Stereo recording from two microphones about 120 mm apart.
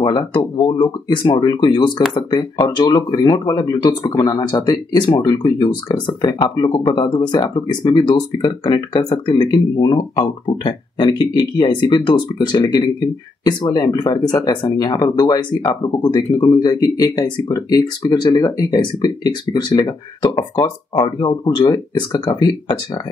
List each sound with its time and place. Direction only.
0.0 s speech: 40° left (ahead or behind)
3.1 s speech: 30° left (ahead or behind)